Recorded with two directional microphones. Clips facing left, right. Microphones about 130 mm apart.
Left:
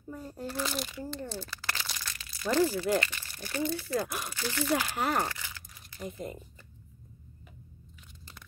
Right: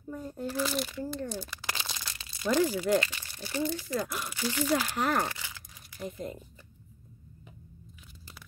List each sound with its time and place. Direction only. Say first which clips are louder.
0.1 s speech: right 3 dB; centre (ahead or behind)
1.1 s crumpling: right 3 dB; 15° right (ahead or behind)
2.1 s crunch: even; 25° right (ahead or behind)
2.5 s speech: right 1 dB; 15° right (ahead or behind)
3.9 s speech: left 1 dB; 10° left (ahead or behind)
4.3 s speech: right 3 dB; 10° right (ahead or behind)
4.7 s speech: even; 10° left (ahead or behind)
5.3 s crunch: even; 15° right (ahead or behind)
5.9 s speech: right 1 dB; centre (ahead or behind)